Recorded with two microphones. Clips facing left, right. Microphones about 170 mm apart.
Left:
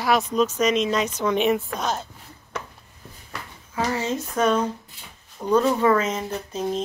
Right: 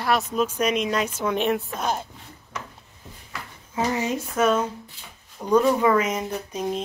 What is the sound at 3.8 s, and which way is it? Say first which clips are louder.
Speech: even; 15° right (ahead or behind).